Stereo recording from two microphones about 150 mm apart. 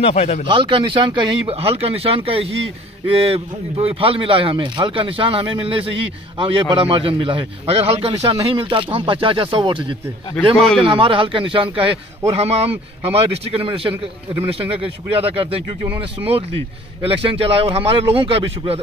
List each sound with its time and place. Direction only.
0.0 s speech: 45° left (ahead or behind)
0.5 s a man's voice: 35° right (ahead or behind)
17.0 s a man's voice: 40° right (ahead or behind)